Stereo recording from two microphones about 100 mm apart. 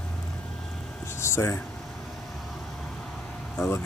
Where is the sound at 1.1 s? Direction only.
25° left (ahead or behind).